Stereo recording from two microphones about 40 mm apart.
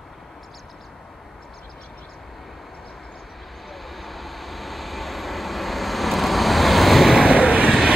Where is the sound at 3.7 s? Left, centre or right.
Centre.